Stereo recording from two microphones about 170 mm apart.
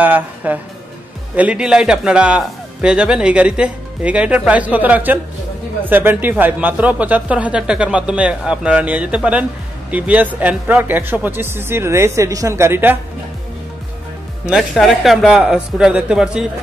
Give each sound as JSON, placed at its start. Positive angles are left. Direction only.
{"t": 0.0, "sound": "a man's voice", "side_deg": -10}
{"t": 14.4, "sound": "speech", "side_deg": 0}